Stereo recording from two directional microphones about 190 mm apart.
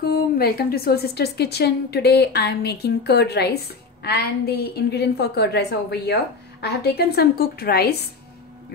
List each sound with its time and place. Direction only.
0.0 s a woman's voice: 55° left (ahead or behind)